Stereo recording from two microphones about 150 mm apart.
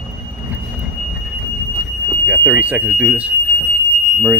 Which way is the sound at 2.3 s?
10° right (ahead or behind).